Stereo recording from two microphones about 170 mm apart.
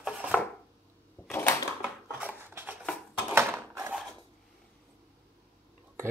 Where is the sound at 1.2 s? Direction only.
10° left (ahead or behind).